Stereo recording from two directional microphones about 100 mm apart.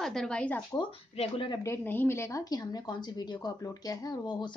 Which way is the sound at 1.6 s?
25° left (ahead or behind).